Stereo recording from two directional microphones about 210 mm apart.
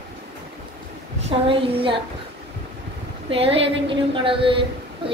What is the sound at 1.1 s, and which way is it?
Speech, 30° right (ahead or behind).